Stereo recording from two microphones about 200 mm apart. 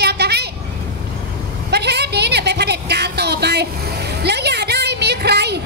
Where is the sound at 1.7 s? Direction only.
55° right (ahead or behind).